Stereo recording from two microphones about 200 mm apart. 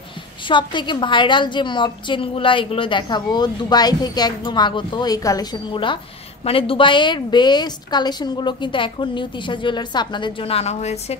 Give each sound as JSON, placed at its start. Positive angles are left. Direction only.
{"t": 0.5, "sound": "a woman's voice", "side_deg": 25}